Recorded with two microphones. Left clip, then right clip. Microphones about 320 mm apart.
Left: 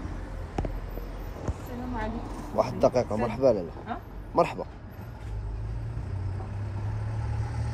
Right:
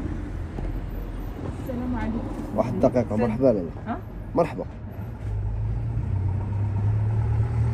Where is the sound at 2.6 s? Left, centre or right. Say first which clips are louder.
Right 2 dB; centre.